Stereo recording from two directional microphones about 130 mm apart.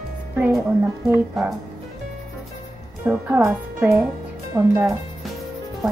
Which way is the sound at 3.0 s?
15° right (ahead or behind).